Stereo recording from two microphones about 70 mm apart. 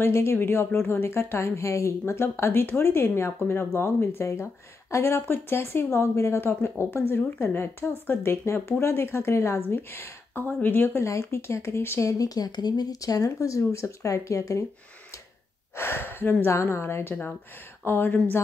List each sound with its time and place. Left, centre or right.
0.0 s a woman's voice: left
12.1 s speech: left
15.7 s a woman's voice: left